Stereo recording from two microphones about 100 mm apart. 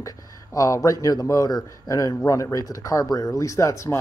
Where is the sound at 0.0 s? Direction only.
30° left (ahead or behind).